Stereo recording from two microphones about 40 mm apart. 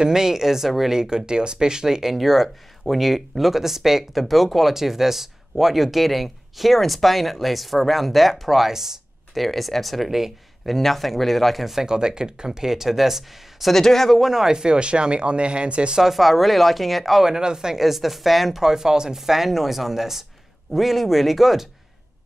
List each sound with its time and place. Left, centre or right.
0.0 s speech: centre
9.4 s speech: centre
11.8 s speech: centre
13.7 s speech: centre
14.2 s speech: centre
16.0 s speech: centre
17.3 s speech: centre
17.7 s speech: centre
18.6 s speech: centre